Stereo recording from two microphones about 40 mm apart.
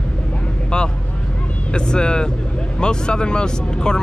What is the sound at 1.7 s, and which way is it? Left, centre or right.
Speech, left.